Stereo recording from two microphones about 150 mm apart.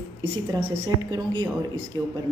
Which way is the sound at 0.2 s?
35° right (ahead or behind).